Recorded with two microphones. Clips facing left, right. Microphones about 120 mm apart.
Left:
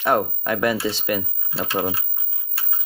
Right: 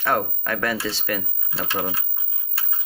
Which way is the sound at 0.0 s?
20° left (ahead or behind).